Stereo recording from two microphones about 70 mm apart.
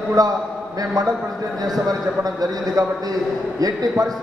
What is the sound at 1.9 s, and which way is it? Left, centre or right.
A man's voice, right.